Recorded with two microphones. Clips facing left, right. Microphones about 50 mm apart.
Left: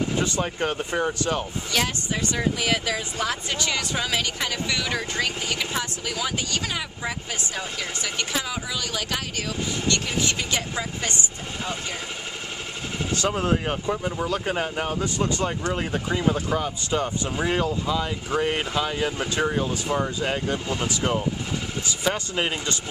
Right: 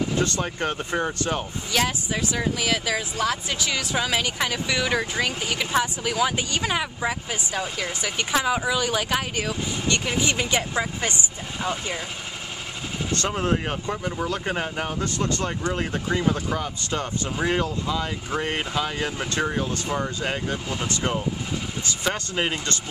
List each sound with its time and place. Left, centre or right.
0.2 s speech: centre
13.3 s speech: centre
22.3 s speech: centre